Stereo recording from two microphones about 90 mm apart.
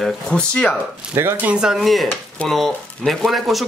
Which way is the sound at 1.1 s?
30° right (ahead or behind).